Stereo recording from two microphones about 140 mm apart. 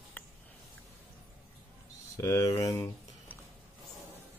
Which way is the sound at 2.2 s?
25° left (ahead or behind).